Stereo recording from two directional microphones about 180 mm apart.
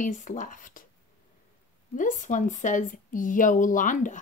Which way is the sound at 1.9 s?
45° left (ahead or behind).